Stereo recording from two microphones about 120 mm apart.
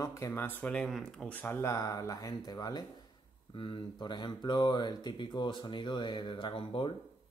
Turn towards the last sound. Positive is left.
turn(degrees=45)  # may be behind; listen again after turning